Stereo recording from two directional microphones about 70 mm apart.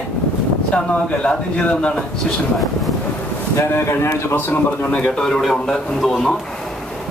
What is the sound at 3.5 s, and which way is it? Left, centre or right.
Speech, left.